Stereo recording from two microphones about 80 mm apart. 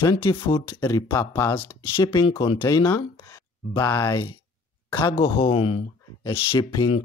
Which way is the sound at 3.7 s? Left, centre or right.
Left.